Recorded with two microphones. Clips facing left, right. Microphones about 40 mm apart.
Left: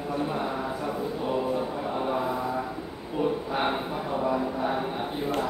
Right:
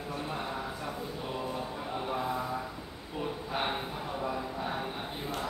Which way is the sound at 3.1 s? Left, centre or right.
Centre.